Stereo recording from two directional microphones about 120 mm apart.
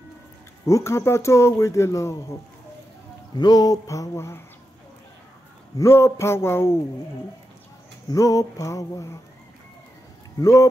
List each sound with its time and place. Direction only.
0.7 s speech: 25° left (ahead or behind)
3.3 s speech: 35° left (ahead or behind)
5.8 s speech: 20° left (ahead or behind)
8.1 s speech: 30° left (ahead or behind)
10.4 s speech: 25° left (ahead or behind)